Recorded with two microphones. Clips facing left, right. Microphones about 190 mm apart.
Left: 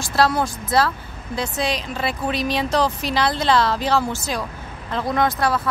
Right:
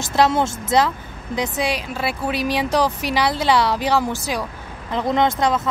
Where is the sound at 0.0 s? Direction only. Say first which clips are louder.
Right 2 dB; 20° right (ahead or behind).